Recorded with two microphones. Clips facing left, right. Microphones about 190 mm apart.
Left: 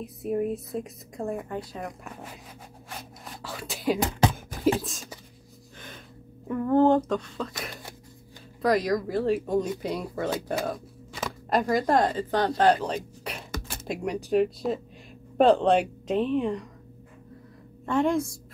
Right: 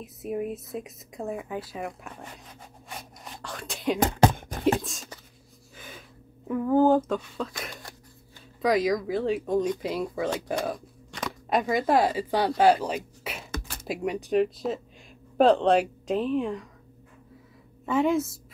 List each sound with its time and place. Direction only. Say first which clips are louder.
0.0 s speech: left 3 dB; 5° right (ahead or behind)
2.9 s a sound: even; centre (ahead or behind)
4.0 s beatboxing: right 3 dB; 50° right (ahead or behind)
4.7 s speech: even; centre (ahead or behind)
5.8 s a sound: even; 5° right (ahead or behind)
8.6 s speech: even; centre (ahead or behind)
17.8 s speech: even; 5° right (ahead or behind)